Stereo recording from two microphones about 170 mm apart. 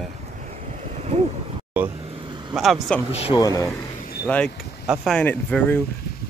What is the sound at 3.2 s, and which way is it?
Speech, 25° left (ahead or behind).